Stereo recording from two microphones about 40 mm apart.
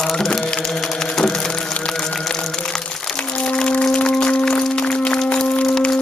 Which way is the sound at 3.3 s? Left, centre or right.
Left.